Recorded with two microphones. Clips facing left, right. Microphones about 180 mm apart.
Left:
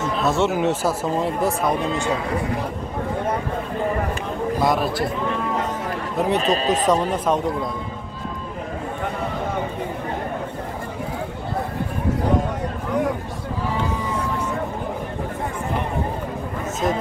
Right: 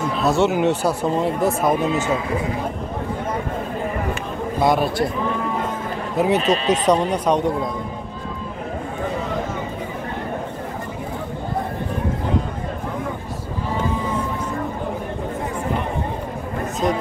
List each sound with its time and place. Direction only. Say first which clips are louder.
0.2 s speech: right 3 dB; centre (ahead or behind)
4.6 s speech: right 3 dB; centre (ahead or behind)
6.1 s speech: right 3 dB; centre (ahead or behind)
6.4 s speech: right 1 dB; 40° left (ahead or behind)
6.9 s speech: right 3 dB; centre (ahead or behind)